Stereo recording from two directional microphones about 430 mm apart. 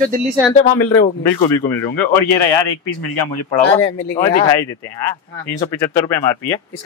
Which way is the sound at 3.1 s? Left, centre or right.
Left.